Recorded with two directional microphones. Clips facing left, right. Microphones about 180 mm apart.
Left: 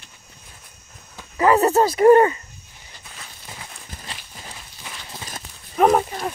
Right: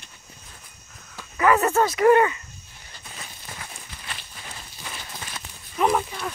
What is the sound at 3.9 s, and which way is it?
Walk, 45° left (ahead or behind).